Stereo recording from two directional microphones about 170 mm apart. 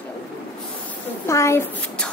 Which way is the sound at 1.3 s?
15° left (ahead or behind).